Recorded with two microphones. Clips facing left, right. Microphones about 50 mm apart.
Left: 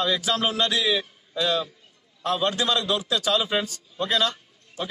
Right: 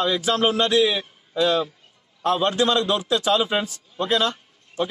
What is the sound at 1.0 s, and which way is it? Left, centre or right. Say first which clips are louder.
A man's voice: right 5 dB; centre.